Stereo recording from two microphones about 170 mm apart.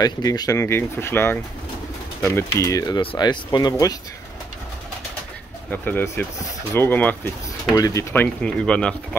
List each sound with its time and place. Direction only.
0.0 s speech: 20° left (ahead or behind)
5.7 s speech: 10° left (ahead or behind)
7.6 s speech: 20° left (ahead or behind)